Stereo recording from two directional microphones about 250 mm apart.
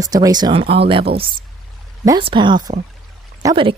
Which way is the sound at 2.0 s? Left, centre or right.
Centre.